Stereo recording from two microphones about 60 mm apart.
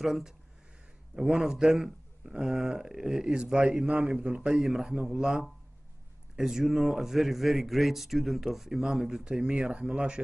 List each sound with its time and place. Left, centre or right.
0.0 s a man's voice: centre